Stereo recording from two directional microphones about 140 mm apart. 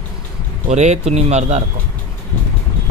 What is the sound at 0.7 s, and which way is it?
Speech, 55° right (ahead or behind).